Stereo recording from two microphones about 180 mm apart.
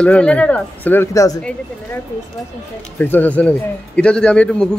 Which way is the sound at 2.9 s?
10° left (ahead or behind).